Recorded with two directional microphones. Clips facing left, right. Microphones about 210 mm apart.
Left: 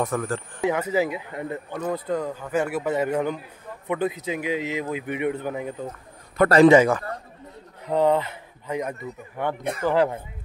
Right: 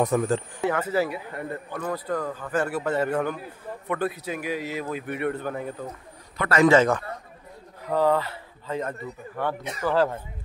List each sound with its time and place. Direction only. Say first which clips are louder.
0.0 s speech: right 3 dB; 20° right (ahead or behind)
0.6 s speech: left 5 dB; 15° left (ahead or behind)
6.4 s a man's voice: left 9 dB; 50° left (ahead or behind)
6.7 s speech: left 3 dB; 10° left (ahead or behind)
9.6 s speech: left 5 dB; 55° left (ahead or behind)
9.8 s speech: left 1 dB; 15° left (ahead or behind)